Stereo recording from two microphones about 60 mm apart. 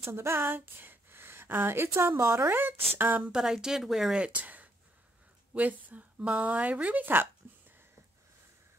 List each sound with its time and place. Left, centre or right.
0.0 s a woman's voice: right
2.5 s speech: right
3.3 s speech: centre
4.2 s speech: right